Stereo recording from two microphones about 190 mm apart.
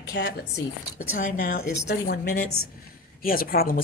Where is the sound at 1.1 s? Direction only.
45° left (ahead or behind).